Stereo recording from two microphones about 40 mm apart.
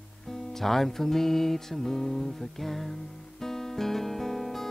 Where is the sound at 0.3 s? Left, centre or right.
Centre.